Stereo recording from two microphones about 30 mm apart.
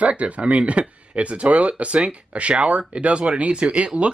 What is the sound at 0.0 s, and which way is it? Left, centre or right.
Speech, right.